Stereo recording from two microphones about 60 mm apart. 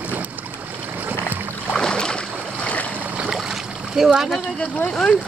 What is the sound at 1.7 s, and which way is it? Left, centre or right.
Boat, centre.